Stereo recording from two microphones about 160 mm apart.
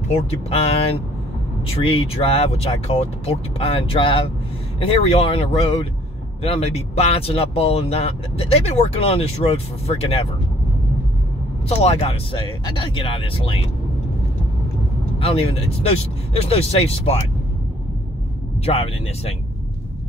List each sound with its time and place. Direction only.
0.5 s speech: 40° left (ahead or behind)
11.7 s speech: 40° left (ahead or behind)
15.1 s speech: 35° left (ahead or behind)
18.7 s speech: 40° left (ahead or behind)